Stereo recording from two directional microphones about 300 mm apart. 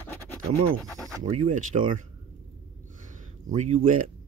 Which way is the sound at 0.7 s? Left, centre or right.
Centre.